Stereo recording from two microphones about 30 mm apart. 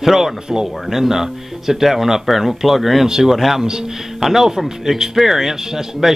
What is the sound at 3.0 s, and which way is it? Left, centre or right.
Speech, right.